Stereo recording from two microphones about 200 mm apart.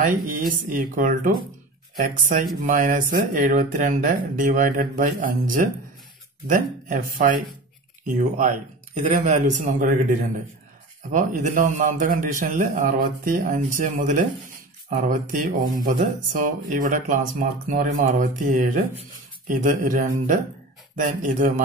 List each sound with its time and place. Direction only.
0.0 s speech: 45° right (ahead or behind)
2.6 s a man's voice: 40° right (ahead or behind)
11.1 s a man's voice: 40° right (ahead or behind)